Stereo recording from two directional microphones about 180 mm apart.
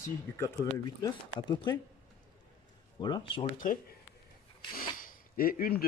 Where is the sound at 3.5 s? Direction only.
45° left (ahead or behind).